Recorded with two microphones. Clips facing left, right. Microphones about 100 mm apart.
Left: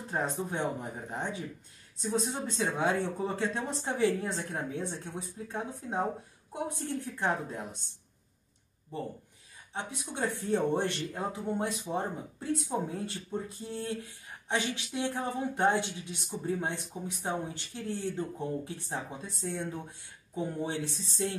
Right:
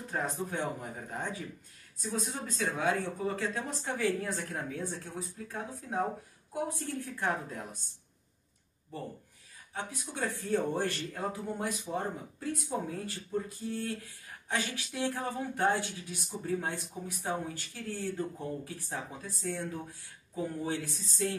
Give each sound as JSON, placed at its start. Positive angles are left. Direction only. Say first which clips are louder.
{"t": 0.1, "sound": "speech", "louder": "left 2 dB", "side_deg": 25}
{"t": 2.0, "sound": "speech", "louder": "left 4 dB", "side_deg": 25}
{"t": 9.8, "sound": "speech", "louder": "left 2 dB", "side_deg": 25}